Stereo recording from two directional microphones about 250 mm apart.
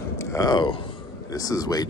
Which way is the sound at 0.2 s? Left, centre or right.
Centre.